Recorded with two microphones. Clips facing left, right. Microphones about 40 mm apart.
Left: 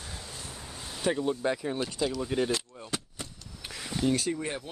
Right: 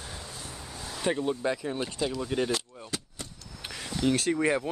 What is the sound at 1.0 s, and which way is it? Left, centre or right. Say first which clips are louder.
Speech: even; centre.